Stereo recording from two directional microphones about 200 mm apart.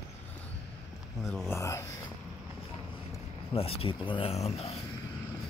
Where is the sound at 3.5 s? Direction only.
30° left (ahead or behind).